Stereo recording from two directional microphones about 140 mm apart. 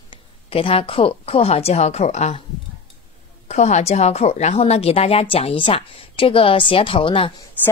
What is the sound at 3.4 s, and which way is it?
A woman's voice, 55° left (ahead or behind).